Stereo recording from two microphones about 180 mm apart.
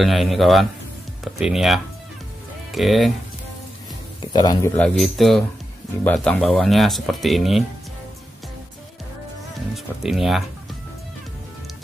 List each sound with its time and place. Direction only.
0.0 s speech: centre (ahead or behind)
4.3 s speech: 20° left (ahead or behind)
4.7 s speech: 5° left (ahead or behind)
10.0 s speech: centre (ahead or behind)